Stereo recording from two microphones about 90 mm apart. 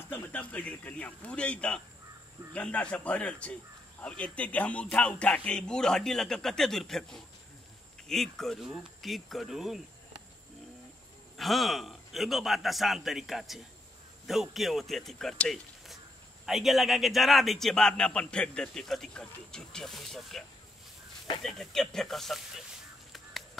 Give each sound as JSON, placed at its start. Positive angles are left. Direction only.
{"t": 0.1, "sound": "a man's voice", "side_deg": 15}
{"t": 11.3, "sound": "a man's voice", "side_deg": 0}